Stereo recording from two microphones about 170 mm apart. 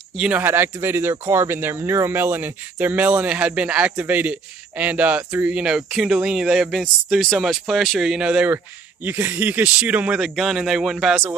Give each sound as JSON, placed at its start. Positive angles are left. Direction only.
{"t": 0.1, "sound": "speech", "side_deg": -5}